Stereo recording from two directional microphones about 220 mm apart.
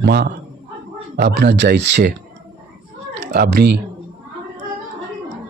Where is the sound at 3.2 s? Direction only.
45° right (ahead or behind).